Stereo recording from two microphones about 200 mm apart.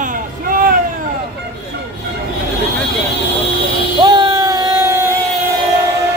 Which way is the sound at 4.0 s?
20° right (ahead or behind).